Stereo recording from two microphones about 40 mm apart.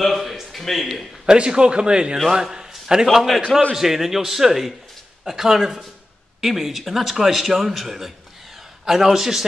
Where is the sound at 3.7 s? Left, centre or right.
Centre.